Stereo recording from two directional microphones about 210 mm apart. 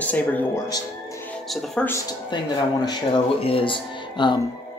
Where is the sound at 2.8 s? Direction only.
25° left (ahead or behind).